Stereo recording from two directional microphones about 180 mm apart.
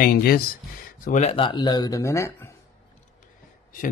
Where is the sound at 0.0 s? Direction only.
60° left (ahead or behind).